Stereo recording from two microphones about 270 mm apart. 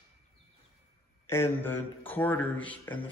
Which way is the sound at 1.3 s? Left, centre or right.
Centre.